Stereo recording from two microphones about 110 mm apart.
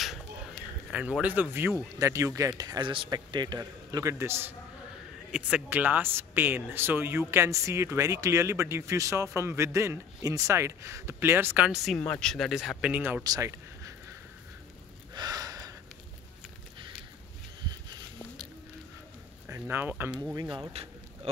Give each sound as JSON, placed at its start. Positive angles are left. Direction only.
{"t": 0.0, "sound": "a sound", "side_deg": 0}
{"t": 0.9, "sound": "speech", "side_deg": -10}
{"t": 2.0, "sound": "speech", "side_deg": -30}
{"t": 2.9, "sound": "speech", "side_deg": -50}
{"t": 3.9, "sound": "speech", "side_deg": -30}
{"t": 5.3, "sound": "speech", "side_deg": -10}
{"t": 11.6, "sound": "speech", "side_deg": 0}
{"t": 12.0, "sound": "speech", "side_deg": 10}
{"t": 13.2, "sound": "a sound", "side_deg": -30}
{"t": 15.1, "sound": "gasp", "side_deg": -35}
{"t": 19.4, "sound": "speech", "side_deg": -20}
{"t": 20.3, "sound": "speech", "side_deg": -45}
{"t": 20.7, "sound": "a sound", "side_deg": -65}